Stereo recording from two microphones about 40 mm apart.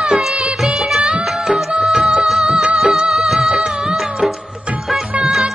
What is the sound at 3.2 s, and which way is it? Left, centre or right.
Music of bollywood, centre.